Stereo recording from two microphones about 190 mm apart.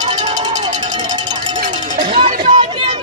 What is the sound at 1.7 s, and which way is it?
Cowbell, 40° right (ahead or behind).